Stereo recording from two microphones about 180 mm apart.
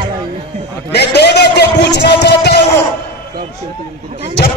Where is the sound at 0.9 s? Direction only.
65° left (ahead or behind).